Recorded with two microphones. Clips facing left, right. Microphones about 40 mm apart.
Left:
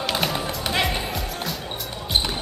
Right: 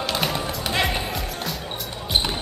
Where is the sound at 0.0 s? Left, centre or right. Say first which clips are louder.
Even; centre.